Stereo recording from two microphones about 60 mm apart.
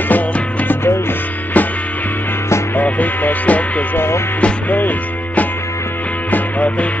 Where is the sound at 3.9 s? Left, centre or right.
Left.